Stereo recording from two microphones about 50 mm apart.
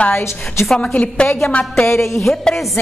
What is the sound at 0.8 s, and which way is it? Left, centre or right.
A woman's voice, left.